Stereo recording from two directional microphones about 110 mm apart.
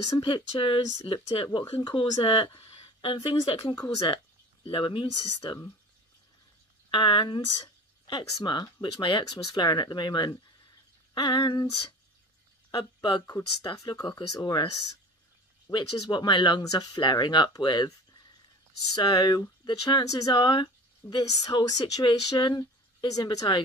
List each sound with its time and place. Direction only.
0.2 s speech: 50° left (ahead or behind)
2.2 s speech: 55° left (ahead or behind)
3.7 s speech: 35° left (ahead or behind)
4.6 s speech: 50° left (ahead or behind)
6.9 s speech: 50° left (ahead or behind)
12.7 s speech: 50° left (ahead or behind)
13.2 s speech: 35° left (ahead or behind)
18.9 s speech: 40° left (ahead or behind)
20.3 s speech: 45° left (ahead or behind)